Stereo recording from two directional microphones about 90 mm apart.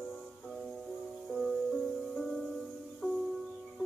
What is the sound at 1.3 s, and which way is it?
Music, 5° left (ahead or behind).